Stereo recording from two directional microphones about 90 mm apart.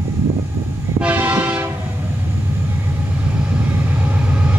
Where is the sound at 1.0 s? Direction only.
20° right (ahead or behind).